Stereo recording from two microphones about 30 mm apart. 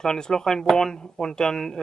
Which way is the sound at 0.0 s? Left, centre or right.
Left.